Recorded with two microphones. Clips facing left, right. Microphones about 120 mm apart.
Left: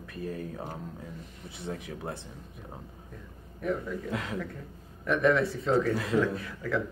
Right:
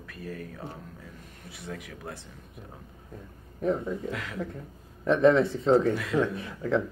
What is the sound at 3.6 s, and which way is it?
Speech, 30° right (ahead or behind).